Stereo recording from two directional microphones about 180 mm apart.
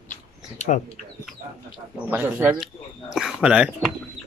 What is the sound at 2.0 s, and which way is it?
Speech, 10° right (ahead or behind).